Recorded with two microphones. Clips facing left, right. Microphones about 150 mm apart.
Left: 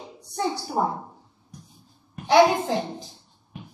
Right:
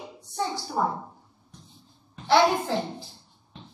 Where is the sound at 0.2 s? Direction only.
15° left (ahead or behind).